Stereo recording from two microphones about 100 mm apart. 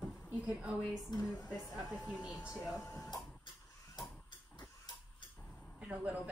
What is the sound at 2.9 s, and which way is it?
Speech, 35° left (ahead or behind).